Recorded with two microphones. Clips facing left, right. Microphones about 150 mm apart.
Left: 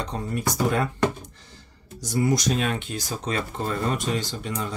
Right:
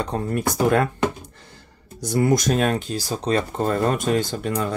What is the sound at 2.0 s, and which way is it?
Speech, 60° right (ahead or behind).